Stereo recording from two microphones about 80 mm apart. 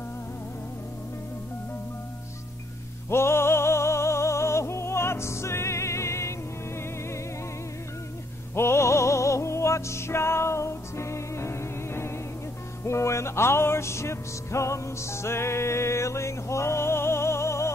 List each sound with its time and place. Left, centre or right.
3.1 s music: left
8.5 s music: left